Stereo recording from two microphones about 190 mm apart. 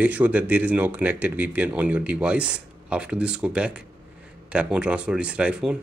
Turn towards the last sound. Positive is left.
turn(degrees=-5)  # may be behind; listen again after turning